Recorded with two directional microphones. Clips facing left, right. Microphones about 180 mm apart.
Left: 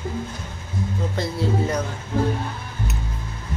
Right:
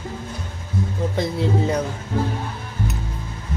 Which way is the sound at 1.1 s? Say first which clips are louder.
Right 2 dB; 15° right (ahead or behind).